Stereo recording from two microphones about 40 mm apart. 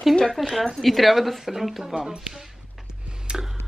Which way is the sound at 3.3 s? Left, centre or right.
Right.